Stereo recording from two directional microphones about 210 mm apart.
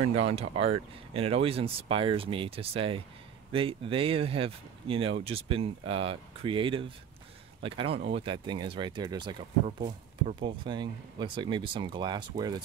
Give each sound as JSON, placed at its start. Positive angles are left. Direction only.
{"t": 0.1, "sound": "speech", "side_deg": -30}